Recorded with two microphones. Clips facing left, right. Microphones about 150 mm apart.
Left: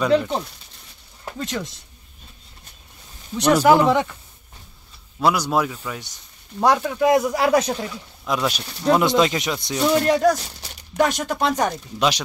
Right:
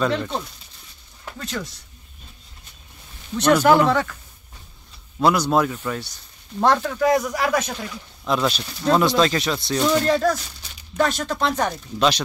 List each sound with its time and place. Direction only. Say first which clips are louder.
0.0 s speech: left 4 dB; 15° left (ahead or behind)
3.6 s speech: left 1 dB; 15° left (ahead or behind)
5.2 s speech: right 2 dB; 10° left (ahead or behind); by 7.9 s 30° left (ahead or behind)
8.3 s speech: right 2 dB; 10° left (ahead or behind)